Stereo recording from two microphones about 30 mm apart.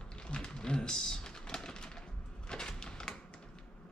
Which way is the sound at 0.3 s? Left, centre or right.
Left.